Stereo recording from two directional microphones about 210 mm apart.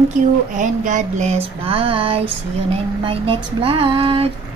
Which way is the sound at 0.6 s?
35° right (ahead or behind).